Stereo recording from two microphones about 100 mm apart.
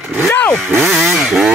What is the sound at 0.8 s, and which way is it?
Speech, centre (ahead or behind).